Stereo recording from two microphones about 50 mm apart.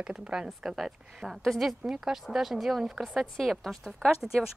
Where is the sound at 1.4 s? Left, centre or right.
Centre.